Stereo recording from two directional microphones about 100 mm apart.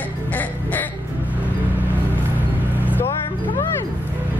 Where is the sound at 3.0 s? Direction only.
25° left (ahead or behind).